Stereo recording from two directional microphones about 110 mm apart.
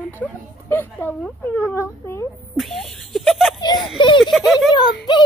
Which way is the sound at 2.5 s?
Centre (ahead or behind).